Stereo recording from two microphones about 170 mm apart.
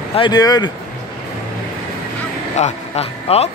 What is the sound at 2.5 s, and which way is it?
Speech, 40° left (ahead or behind).